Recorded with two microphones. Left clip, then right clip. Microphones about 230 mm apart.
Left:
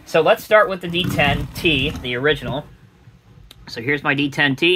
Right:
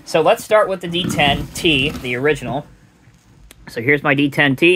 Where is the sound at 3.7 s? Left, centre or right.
Right.